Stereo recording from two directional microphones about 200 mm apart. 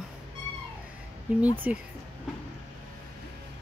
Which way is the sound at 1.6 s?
5° right (ahead or behind).